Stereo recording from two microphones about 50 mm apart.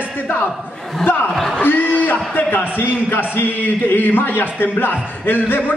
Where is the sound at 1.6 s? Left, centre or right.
Left.